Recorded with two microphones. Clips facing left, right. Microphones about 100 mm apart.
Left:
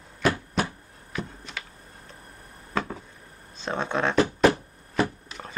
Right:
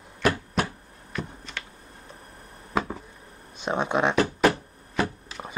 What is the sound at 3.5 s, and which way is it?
Speech, 15° right (ahead or behind).